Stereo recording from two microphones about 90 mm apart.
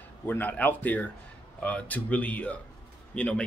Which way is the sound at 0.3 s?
20° left (ahead or behind).